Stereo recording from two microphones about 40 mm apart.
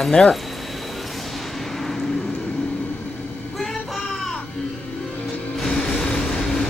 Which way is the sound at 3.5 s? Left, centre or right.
Centre.